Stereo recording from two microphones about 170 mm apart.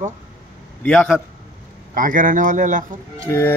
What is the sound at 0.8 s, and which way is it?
Speech, 5° left (ahead or behind).